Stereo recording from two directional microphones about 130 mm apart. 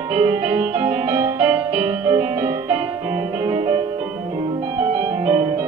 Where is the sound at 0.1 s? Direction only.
50° right (ahead or behind).